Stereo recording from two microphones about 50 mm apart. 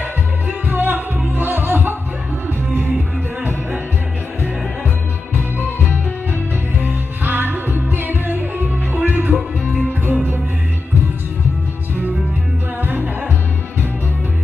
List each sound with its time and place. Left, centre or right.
0.5 s music: right
6.8 s music: right
12.8 s music: right